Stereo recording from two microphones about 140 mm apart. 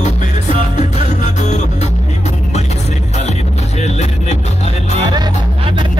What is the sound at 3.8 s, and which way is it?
Vehicle, 55° left (ahead or behind).